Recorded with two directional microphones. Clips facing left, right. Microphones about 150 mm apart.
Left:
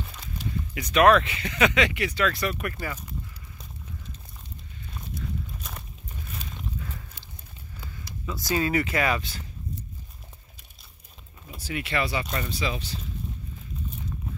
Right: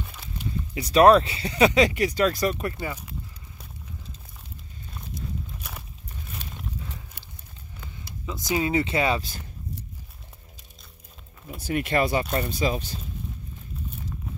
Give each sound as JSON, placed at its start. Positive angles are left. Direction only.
{"t": 0.0, "sound": "a sound", "side_deg": -10}
{"t": 0.7, "sound": "speech", "side_deg": -35}
{"t": 2.5, "sound": "speech", "side_deg": -20}
{"t": 5.6, "sound": "walk", "side_deg": -5}
{"t": 7.9, "sound": "speech", "side_deg": -20}
{"t": 11.5, "sound": "speech", "side_deg": -50}